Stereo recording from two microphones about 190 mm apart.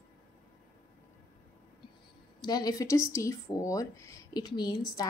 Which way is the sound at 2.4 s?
20° left (ahead or behind).